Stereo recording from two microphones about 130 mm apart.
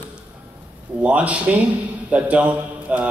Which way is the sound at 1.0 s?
10° right (ahead or behind).